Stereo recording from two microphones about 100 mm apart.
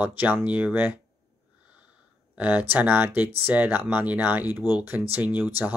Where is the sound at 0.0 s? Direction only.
20° right (ahead or behind).